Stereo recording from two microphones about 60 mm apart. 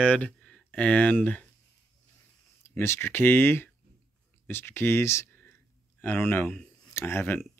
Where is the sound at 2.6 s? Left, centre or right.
Left.